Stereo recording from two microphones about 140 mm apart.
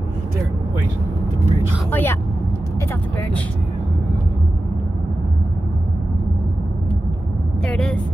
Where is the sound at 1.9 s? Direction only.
15° left (ahead or behind).